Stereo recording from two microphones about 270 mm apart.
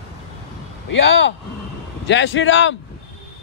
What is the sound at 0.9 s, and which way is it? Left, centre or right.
A man's voice, left.